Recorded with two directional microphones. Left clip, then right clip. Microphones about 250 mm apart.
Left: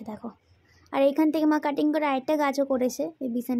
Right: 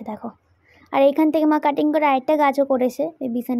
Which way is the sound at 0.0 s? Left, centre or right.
Centre.